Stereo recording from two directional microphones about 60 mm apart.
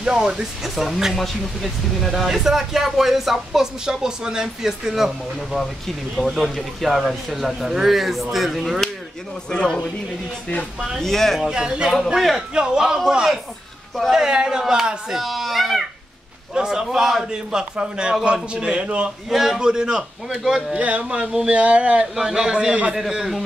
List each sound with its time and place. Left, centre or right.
0.0 s a child's voice: centre
9.5 s speech: centre
11.0 s a child's voice: centre
11.4 s a child's voice: centre
14.2 s a child's voice: centre
16.5 s speech: centre
19.2 s speech: centre
20.7 s speech: right
22.1 s speech: centre
22.9 s a child's voice: centre